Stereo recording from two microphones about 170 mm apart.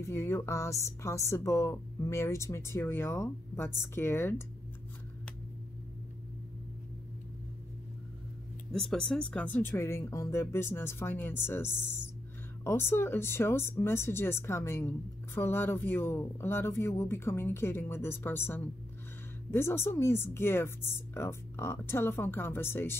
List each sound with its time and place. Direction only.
0.0 s speech: 15° left (ahead or behind)
8.7 s speech: 5° left (ahead or behind)